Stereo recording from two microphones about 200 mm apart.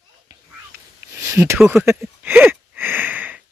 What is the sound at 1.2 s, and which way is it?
Speech, 15° right (ahead or behind).